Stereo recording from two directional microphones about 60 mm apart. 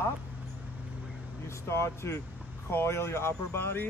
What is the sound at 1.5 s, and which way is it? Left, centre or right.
Speech, left.